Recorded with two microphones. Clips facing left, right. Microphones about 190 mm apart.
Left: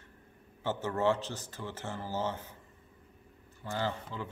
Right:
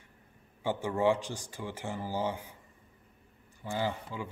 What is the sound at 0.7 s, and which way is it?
A man's voice, 10° right (ahead or behind).